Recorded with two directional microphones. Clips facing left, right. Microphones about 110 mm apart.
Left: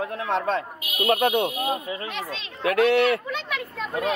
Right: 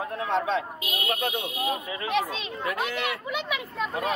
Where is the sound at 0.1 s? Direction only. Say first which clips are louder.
Right 2 dB; 60° left (ahead or behind).